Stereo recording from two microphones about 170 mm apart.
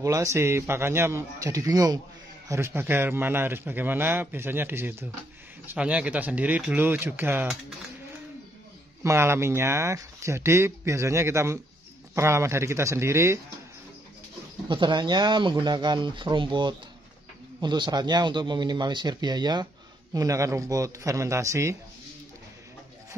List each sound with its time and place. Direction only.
0.0 s speech: 20° right (ahead or behind)
9.0 s speech: 15° right (ahead or behind)
14.7 s speech: 25° right (ahead or behind)